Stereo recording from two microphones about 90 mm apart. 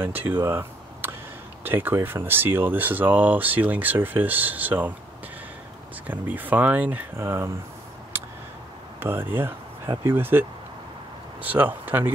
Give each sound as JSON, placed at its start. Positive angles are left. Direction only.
{"t": 0.3, "sound": "a sound", "side_deg": -25}
{"t": 1.6, "sound": "speech", "side_deg": -20}
{"t": 6.0, "sound": "speech", "side_deg": -20}
{"t": 7.2, "sound": "speech", "side_deg": -35}
{"t": 9.0, "sound": "speech", "side_deg": -25}
{"t": 11.4, "sound": "speech", "side_deg": -20}